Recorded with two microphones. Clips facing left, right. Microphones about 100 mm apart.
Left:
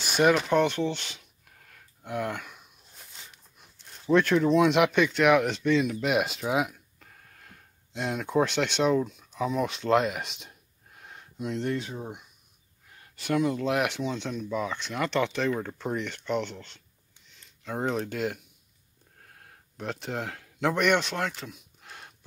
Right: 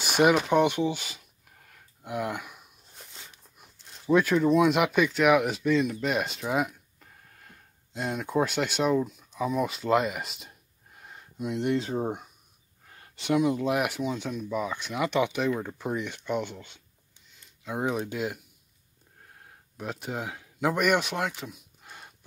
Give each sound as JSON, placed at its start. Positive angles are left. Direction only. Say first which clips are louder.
{"t": 0.1, "sound": "speech", "louder": "right 1 dB", "side_deg": -15}
{"t": 4.0, "sound": "speech", "louder": "even", "side_deg": -5}
{"t": 11.0, "sound": "a sound", "louder": "right 1 dB", "side_deg": -5}
{"t": 11.5, "sound": "speech", "louder": "right 3 dB", "side_deg": -15}
{"t": 11.8, "sound": "speech", "louder": "right 8 dB", "side_deg": -40}
{"t": 13.1, "sound": "speech", "louder": "right 2 dB", "side_deg": -20}
{"t": 19.4, "sound": "speech", "louder": "left 1 dB", "side_deg": -5}